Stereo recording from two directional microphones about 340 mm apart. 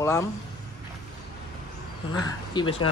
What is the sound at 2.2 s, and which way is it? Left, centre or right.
Speech, centre.